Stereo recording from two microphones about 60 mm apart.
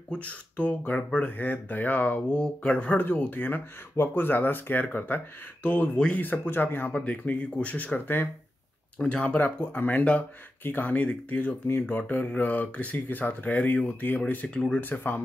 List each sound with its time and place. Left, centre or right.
0.1 s speech: left
2.3 s speech: centre; by 11.8 s left
11.8 s speech: left
14.5 s speech: centre
14.8 s speech: left